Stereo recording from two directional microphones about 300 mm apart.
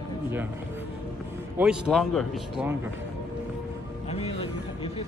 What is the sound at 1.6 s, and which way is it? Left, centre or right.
A man's voice, centre.